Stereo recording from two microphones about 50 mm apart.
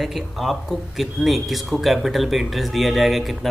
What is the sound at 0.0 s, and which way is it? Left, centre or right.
A man's voice, centre.